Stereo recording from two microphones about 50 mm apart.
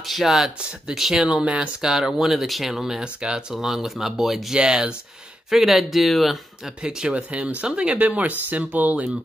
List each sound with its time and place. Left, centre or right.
0.0 s speech: centre
1.2 s speech: right
1.8 s speech: centre
3.0 s speech: centre
3.5 s speech: centre
6.8 s speech: centre